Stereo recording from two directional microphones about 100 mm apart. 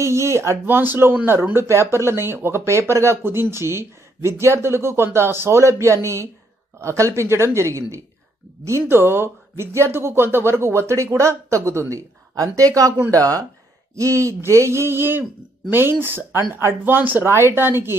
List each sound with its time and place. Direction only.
0.0 s speech: 30° right (ahead or behind)